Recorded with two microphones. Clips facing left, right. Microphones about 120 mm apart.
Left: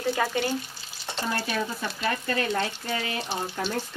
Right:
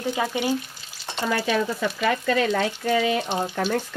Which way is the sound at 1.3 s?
90° right.